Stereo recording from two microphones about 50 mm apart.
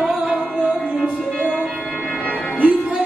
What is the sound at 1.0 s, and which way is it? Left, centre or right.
Music, centre.